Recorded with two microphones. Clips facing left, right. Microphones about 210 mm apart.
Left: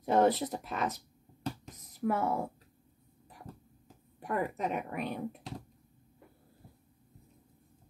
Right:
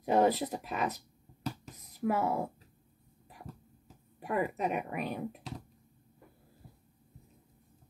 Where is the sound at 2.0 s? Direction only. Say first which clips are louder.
Even; 10° right (ahead or behind).